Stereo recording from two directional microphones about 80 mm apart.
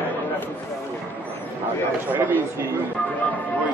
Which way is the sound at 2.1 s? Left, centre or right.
Right.